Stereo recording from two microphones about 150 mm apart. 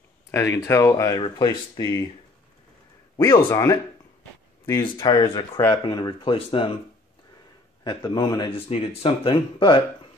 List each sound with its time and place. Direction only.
0.3 s speech: 20° left (ahead or behind)
3.2 s speech: 15° left (ahead or behind)
4.8 s speech: 25° left (ahead or behind)
7.8 s speech: 30° left (ahead or behind)